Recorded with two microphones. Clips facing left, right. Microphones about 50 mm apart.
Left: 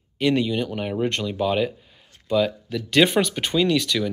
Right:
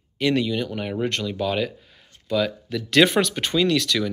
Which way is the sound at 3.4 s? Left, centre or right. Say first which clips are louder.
Even; centre.